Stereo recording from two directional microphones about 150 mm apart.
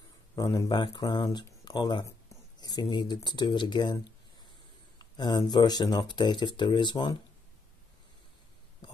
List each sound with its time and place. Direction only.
0.4 s speech: 25° left (ahead or behind)